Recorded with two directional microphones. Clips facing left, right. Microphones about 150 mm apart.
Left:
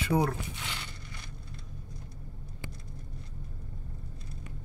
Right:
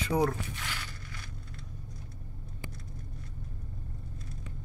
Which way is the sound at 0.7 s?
20° left (ahead or behind).